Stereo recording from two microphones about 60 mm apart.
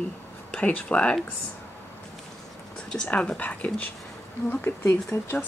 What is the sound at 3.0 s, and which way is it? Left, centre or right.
Speech, centre.